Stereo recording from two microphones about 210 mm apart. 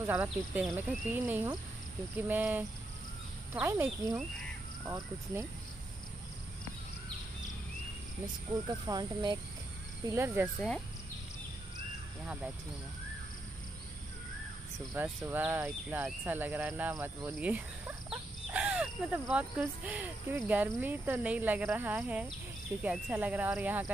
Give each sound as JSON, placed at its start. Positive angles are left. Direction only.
{"t": 0.0, "sound": "speech", "side_deg": -10}
{"t": 8.6, "sound": "speech", "side_deg": -20}
{"t": 10.1, "sound": "speech", "side_deg": -10}
{"t": 15.0, "sound": "speech", "side_deg": -10}